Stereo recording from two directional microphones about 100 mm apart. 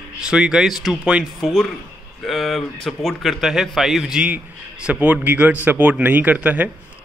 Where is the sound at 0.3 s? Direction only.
5° right (ahead or behind).